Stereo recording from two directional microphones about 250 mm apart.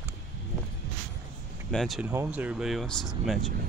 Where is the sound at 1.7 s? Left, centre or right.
Centre.